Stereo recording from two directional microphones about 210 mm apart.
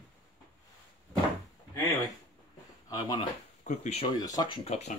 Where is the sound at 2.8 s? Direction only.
20° left (ahead or behind).